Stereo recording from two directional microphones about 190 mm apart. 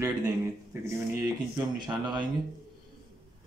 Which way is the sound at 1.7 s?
25° right (ahead or behind).